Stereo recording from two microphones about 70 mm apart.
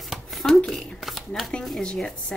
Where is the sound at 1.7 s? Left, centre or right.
Centre.